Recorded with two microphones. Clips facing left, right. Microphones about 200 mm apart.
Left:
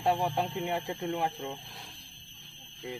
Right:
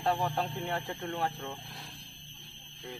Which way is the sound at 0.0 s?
10° left (ahead or behind).